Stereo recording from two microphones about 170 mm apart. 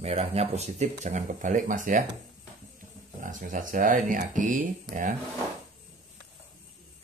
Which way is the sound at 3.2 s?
50° right (ahead or behind).